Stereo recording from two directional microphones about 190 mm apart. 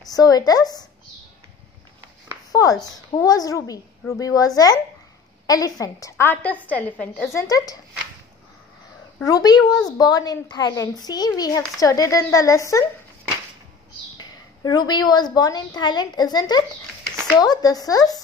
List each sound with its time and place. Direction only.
0.1 s a child's voice: 20° left (ahead or behind)
2.5 s a woman's voice: 20° left (ahead or behind)
7.3 s a woman's voice: 20° left (ahead or behind)
9.2 s a child's voice: 20° left (ahead or behind)
14.1 s a woman's voice: 20° left (ahead or behind)